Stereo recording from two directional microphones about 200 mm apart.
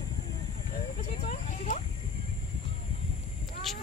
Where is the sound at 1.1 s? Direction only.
35° left (ahead or behind).